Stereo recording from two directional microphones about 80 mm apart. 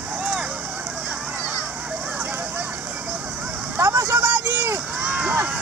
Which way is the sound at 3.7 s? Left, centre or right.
Right.